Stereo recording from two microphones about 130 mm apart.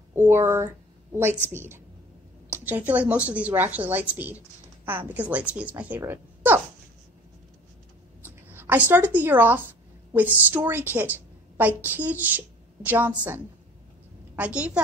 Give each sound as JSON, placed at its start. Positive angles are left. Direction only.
{"t": 0.1, "sound": "a woman's voice", "side_deg": -20}
{"t": 8.5, "sound": "a woman's voice", "side_deg": -15}
{"t": 14.3, "sound": "a woman's voice", "side_deg": -10}